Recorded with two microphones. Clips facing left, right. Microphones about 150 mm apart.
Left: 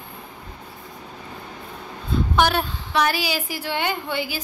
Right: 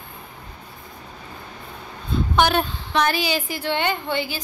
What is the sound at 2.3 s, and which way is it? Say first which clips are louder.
A woman's voice: right 2 dB; 5° left (ahead or behind).